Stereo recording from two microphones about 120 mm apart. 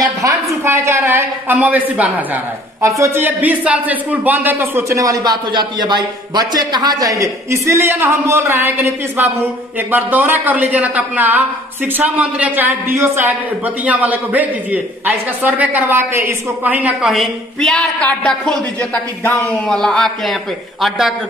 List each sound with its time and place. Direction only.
0.0 s a sound: 30° right (ahead or behind); by 2.4 s 15° right (ahead or behind)
2.8 s a woman's voice: 25° right (ahead or behind)
17.0 s a woman's voice: centre (ahead or behind)